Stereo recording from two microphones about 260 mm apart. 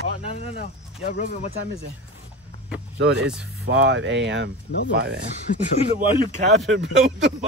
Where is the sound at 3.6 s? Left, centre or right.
Right.